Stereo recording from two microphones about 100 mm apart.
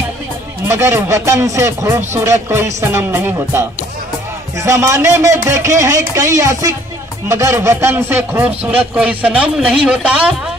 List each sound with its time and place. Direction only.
0.7 s speech: 25° right (ahead or behind); by 10.3 s 10° right (ahead or behind)